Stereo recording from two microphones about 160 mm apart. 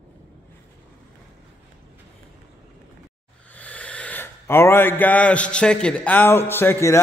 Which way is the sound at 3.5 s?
10° left (ahead or behind).